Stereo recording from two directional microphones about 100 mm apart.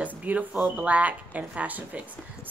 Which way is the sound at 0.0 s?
15° right (ahead or behind).